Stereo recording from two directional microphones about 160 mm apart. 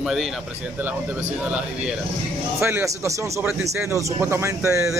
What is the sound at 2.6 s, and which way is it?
Speech, 15° right (ahead or behind).